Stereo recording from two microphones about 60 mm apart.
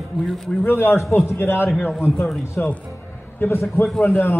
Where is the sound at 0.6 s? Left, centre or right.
Left.